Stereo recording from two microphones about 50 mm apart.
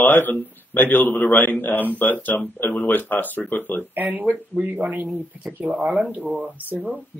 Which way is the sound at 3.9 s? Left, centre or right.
Right.